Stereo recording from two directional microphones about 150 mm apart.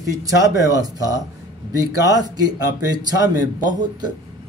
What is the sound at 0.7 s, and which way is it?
Speech, 25° right (ahead or behind).